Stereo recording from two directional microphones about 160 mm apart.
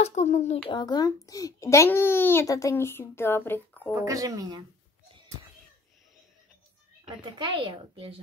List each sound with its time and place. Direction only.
0.0 s speech: 45° left (ahead or behind)
0.7 s a child's voice: 25° left (ahead or behind)
3.9 s speech: 20° right (ahead or behind)
7.1 s speech: 30° right (ahead or behind)